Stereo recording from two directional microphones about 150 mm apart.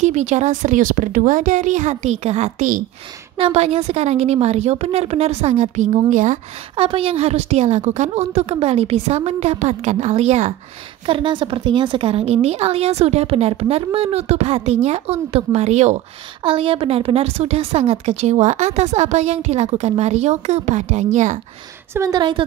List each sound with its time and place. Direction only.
0.0 s a woman's voice: 50° right (ahead or behind)
6.7 s a woman's voice: 35° right (ahead or behind)
11.1 s a woman's voice: 35° right (ahead or behind)
16.4 s a woman's voice: 35° right (ahead or behind); by 21.4 s 50° right (ahead or behind)
21.9 s a woman's voice: 25° right (ahead or behind)